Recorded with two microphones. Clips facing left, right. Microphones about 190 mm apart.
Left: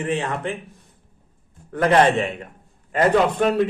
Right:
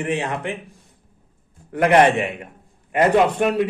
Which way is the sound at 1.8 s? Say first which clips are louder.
Right 1 dB; 15° right (ahead or behind).